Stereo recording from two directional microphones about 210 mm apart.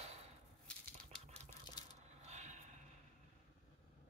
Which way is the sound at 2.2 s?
30° right (ahead or behind).